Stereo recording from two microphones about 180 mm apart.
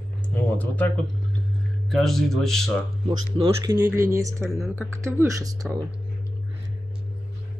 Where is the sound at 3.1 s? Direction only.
25° right (ahead or behind).